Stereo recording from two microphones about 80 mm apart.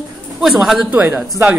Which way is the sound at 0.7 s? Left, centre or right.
Centre.